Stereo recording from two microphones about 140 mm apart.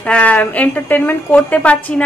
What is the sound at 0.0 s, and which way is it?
A woman's voice, 10° left (ahead or behind).